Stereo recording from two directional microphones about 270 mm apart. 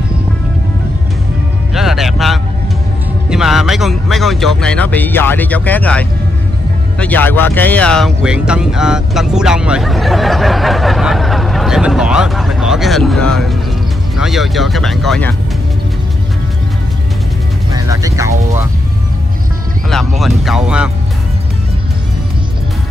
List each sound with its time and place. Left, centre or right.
1.7 s music: centre
3.3 s speech: centre
17.7 s speech: centre
20.2 s speech: centre